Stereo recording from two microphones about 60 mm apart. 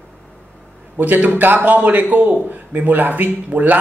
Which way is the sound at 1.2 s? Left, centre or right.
Right.